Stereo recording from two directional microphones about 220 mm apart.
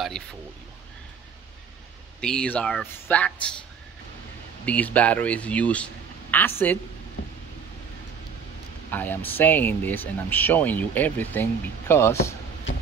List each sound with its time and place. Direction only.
0.0 s speech: centre (ahead or behind)
2.1 s speech: 5° left (ahead or behind)
4.6 s speech: 5° left (ahead or behind)
8.9 s speech: 10° left (ahead or behind)